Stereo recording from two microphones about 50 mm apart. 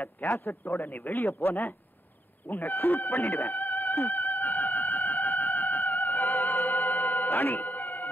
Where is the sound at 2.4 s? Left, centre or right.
Left.